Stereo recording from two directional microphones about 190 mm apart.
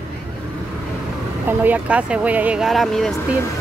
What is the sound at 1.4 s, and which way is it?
Speech, 10° right (ahead or behind).